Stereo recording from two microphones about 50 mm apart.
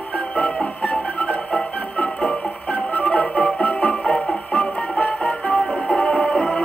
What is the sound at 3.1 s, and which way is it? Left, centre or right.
Music, left.